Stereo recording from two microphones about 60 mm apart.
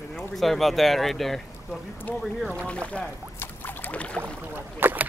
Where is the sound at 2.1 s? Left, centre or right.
Left.